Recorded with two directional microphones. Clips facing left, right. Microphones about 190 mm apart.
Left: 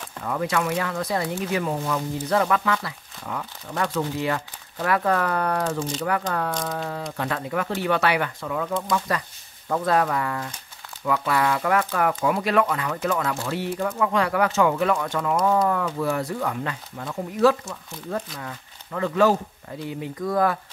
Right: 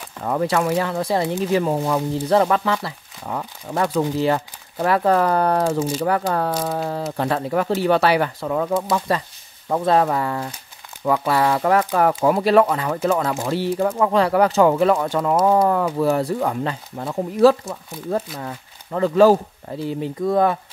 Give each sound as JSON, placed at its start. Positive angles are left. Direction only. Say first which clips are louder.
{"t": 0.2, "sound": "speech", "louder": "right 5 dB", "side_deg": -35}